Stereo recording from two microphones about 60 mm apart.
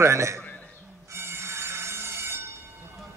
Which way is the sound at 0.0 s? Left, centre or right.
Right.